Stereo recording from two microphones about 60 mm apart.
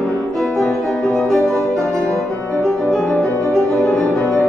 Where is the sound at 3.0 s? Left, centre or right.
Centre.